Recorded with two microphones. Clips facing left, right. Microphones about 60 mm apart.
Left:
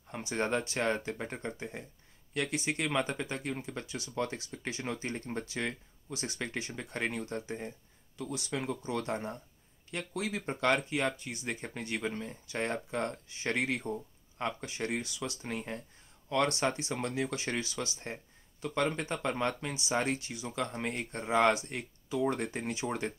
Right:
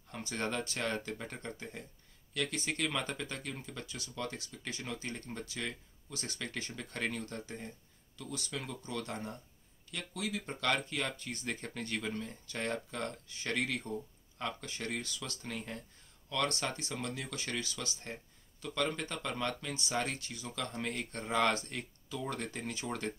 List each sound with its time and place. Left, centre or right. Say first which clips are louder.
0.1 s speech: left 5 dB; left
6.1 s speech: left 4 dB; left